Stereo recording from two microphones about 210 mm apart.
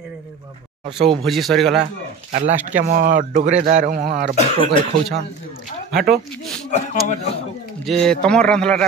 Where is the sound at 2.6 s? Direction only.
40° right (ahead or behind).